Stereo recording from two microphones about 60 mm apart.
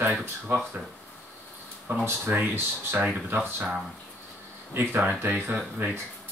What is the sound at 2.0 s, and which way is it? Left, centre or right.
Speech, right.